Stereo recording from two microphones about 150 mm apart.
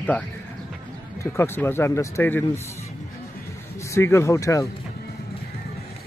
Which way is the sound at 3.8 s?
20° left (ahead or behind).